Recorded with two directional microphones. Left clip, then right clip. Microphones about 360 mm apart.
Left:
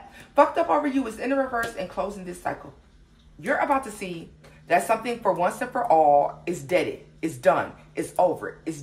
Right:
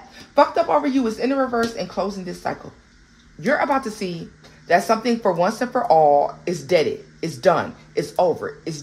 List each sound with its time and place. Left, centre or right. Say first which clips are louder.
0.3 s speech: right 3 dB; right